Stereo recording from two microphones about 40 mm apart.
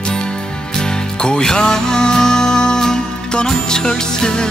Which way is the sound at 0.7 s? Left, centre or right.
Centre.